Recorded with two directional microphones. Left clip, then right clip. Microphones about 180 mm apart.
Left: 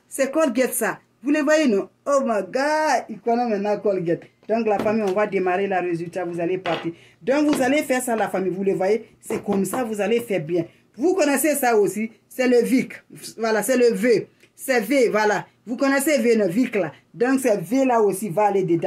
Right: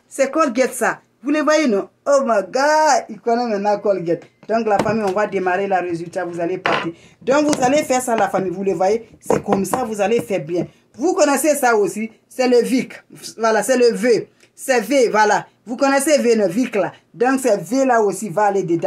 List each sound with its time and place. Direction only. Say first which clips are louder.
0.1 s speech: right 3 dB; 15° left (ahead or behind)
6.3 s a sound: right 1 dB; 5° left (ahead or behind)
7.2 s speech: right 4 dB; 5° left (ahead or behind)
11.2 s speech: right 4 dB; 40° right (ahead or behind)
11.8 s speech: right 1 dB; 10° left (ahead or behind)